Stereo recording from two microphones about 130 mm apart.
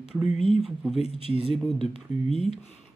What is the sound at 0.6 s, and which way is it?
Speech, centre (ahead or behind).